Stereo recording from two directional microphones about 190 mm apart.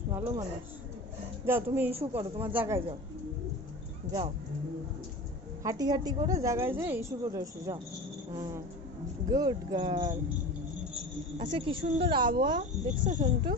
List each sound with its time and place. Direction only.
0.1 s a woman's voice: 15° right (ahead or behind)
2.0 s speech: 30° right (ahead or behind)
2.4 s a woman's voice: 10° right (ahead or behind)
5.6 s a woman's voice: 20° right (ahead or behind)
11.3 s speech: 25° right (ahead or behind)
12.5 s speech: 40° right (ahead or behind)